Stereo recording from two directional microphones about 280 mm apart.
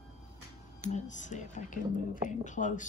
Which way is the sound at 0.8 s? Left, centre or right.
Left.